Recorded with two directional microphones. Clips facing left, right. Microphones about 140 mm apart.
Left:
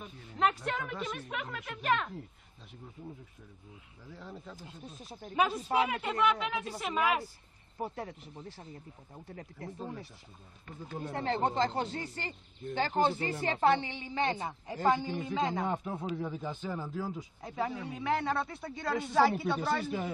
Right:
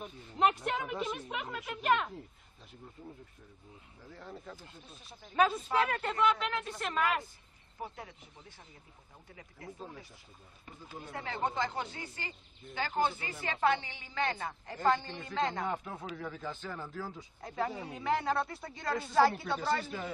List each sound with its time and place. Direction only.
0.0 s a woman's voice: 15° right (ahead or behind)
4.1 s speech: 5° left (ahead or behind)
7.9 s speech: 35° left (ahead or behind)
11.0 s speech: 35° left (ahead or behind); by 15.6 s 5° left (ahead or behind)
15.6 s speech: 20° left (ahead or behind); by 19.9 s centre (ahead or behind)